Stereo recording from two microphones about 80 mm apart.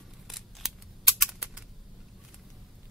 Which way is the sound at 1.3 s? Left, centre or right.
Centre.